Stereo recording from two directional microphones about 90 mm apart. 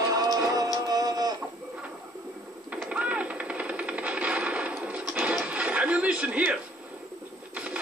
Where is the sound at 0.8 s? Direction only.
45° right (ahead or behind).